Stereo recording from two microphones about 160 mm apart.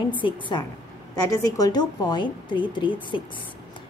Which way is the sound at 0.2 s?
30° left (ahead or behind).